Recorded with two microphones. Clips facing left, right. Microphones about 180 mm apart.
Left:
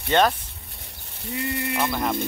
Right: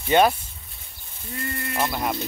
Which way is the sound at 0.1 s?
10° right (ahead or behind).